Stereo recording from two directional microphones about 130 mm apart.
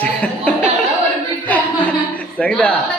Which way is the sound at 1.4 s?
10° left (ahead or behind).